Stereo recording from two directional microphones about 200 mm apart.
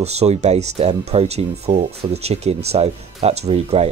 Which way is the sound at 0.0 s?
30° right (ahead or behind).